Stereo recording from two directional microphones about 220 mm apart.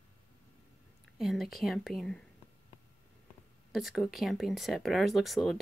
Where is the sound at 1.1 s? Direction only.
Centre (ahead or behind).